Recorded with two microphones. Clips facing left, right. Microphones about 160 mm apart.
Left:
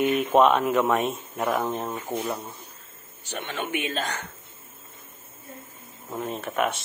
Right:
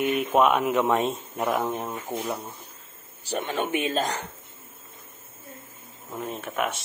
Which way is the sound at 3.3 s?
40° right (ahead or behind).